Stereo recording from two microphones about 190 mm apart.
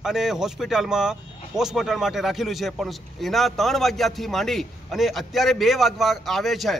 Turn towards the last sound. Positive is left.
turn(degrees=0)  # may be behind; listen again after turning